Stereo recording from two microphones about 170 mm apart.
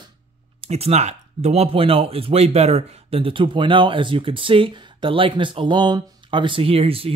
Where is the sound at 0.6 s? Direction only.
35° right (ahead or behind).